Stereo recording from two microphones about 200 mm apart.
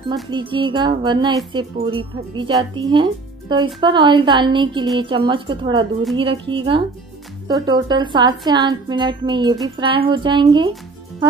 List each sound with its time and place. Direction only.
0.1 s speech: 25° right (ahead or behind)